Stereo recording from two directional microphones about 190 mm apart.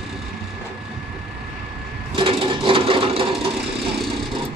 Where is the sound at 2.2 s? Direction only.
25° right (ahead or behind).